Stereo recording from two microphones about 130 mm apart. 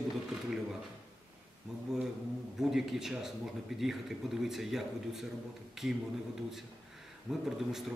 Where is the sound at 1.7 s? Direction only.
Centre (ahead or behind).